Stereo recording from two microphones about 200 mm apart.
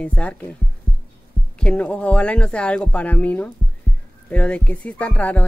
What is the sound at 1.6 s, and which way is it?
Speech, 5° left (ahead or behind).